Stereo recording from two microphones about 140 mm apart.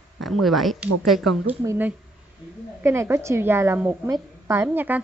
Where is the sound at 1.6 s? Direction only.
15° right (ahead or behind).